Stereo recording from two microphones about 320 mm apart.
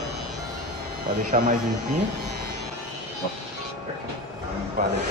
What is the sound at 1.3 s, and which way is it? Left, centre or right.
Speech, right.